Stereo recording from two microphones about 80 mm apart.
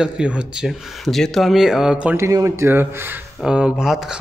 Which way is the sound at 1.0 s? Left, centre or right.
Centre.